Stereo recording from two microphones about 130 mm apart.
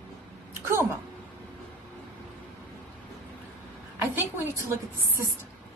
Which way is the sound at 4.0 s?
15° right (ahead or behind).